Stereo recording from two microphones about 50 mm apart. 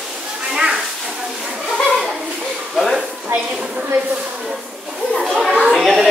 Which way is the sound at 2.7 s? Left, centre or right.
Centre.